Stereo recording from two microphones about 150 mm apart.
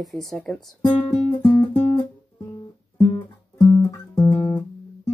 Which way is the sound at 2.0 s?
25° left (ahead or behind).